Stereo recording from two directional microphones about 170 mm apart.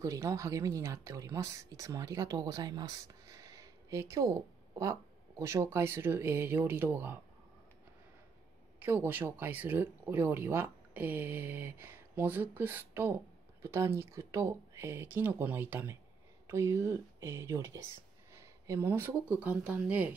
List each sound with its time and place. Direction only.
0.0 s speech: 20° right (ahead or behind)
8.7 s speech: 10° right (ahead or behind)